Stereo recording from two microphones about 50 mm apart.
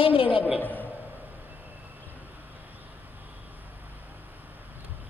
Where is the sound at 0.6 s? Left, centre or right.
Left.